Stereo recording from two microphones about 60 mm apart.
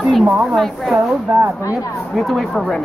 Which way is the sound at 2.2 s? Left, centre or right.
Centre.